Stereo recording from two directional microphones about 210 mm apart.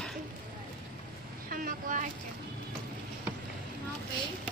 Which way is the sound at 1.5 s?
40° right (ahead or behind).